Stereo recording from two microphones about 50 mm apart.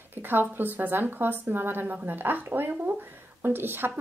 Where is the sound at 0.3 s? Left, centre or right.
Right.